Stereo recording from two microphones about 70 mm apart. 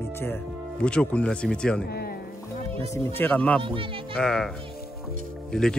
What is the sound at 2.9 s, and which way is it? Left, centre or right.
Speech, left.